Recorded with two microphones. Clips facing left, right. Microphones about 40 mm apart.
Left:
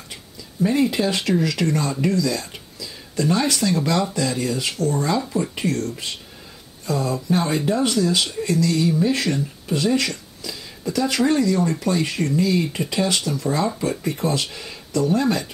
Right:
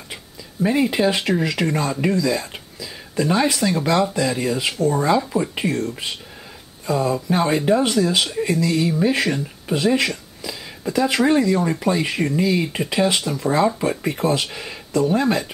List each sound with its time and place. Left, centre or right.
0.1 s speech: centre